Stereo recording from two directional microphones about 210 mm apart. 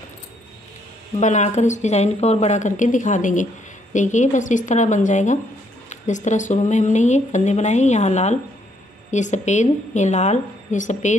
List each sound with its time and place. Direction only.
1.2 s speech: 35° left (ahead or behind)